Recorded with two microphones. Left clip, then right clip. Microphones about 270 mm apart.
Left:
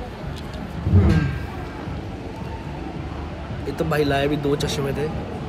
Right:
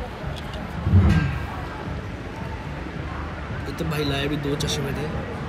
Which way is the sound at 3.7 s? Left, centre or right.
Centre.